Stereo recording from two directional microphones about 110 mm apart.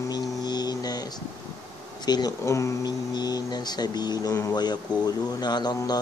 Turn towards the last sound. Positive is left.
turn(degrees=40)  # may be behind; listen again after turning